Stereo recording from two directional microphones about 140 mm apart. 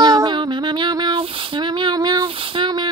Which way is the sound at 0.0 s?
30° right (ahead or behind).